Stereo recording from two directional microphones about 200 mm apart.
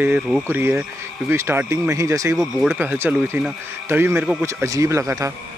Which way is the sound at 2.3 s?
Centre (ahead or behind).